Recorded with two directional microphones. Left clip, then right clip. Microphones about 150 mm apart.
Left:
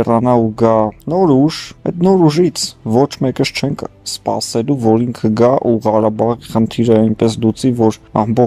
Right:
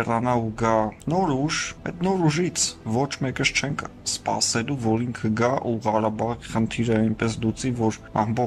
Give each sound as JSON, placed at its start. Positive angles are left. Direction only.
{"t": 0.0, "sound": "speech", "side_deg": 35}